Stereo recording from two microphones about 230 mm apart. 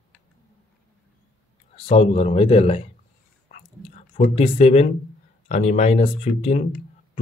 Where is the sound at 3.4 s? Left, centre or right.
Left.